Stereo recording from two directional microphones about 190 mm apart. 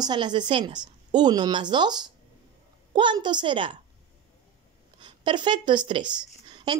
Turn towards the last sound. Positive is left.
turn(degrees=-25)  # may be behind; listen again after turning